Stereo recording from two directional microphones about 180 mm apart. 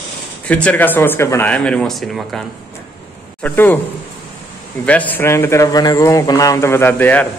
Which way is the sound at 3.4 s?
10° left (ahead or behind).